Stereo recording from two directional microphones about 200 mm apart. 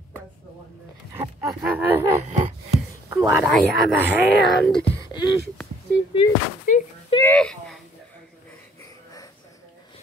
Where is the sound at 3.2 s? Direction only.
5° right (ahead or behind).